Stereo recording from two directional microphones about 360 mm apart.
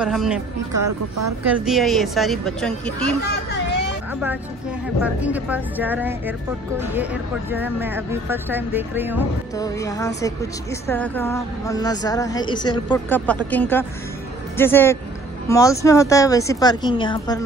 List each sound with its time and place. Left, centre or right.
0.0 s speech: centre
0.7 s a woman's voice: right
1.4 s speech: centre
3.4 s a sound: left
4.1 s a sound: centre
5.0 s speech: centre
9.6 s a woman's voice: centre